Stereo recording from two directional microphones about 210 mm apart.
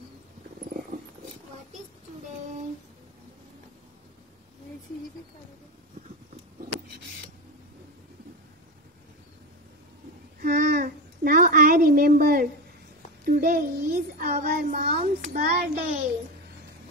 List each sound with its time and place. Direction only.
10.4 s child singing: 50° right (ahead or behind)
13.2 s a child's voice: 45° right (ahead or behind)
14.9 s a child's voice: 30° right (ahead or behind)
15.3 s a child's voice: 45° right (ahead or behind)